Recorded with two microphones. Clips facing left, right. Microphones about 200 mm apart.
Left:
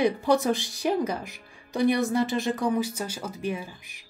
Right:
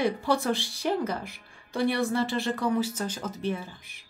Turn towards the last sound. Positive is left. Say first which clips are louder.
# left 1 dB
turn(degrees=15)  # may be behind; listen again after turning